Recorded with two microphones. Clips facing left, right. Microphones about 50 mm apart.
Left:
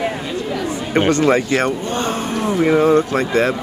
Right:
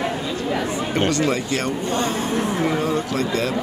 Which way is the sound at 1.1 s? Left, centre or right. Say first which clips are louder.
Left 6 dB; left.